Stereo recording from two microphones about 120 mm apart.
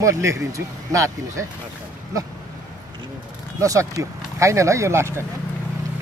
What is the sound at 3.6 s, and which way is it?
Speech, 25° right (ahead or behind).